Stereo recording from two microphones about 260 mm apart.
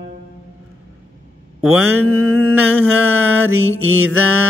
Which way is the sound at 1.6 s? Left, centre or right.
Right.